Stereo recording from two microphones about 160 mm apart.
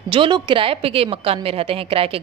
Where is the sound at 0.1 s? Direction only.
30° right (ahead or behind).